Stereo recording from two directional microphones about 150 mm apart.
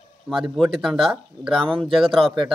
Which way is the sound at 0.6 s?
Centre (ahead or behind).